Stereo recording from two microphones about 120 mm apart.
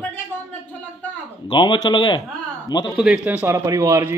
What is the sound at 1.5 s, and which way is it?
Speech, 40° left (ahead or behind).